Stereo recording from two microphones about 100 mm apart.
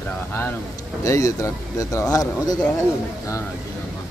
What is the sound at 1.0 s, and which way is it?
Speech, 35° left (ahead or behind).